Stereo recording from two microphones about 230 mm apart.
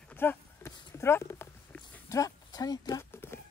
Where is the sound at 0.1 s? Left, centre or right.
Centre.